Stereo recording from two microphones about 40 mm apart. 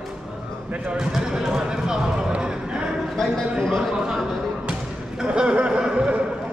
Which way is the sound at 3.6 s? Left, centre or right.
Centre.